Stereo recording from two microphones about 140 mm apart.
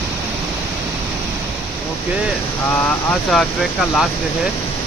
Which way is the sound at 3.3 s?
Centre (ahead or behind).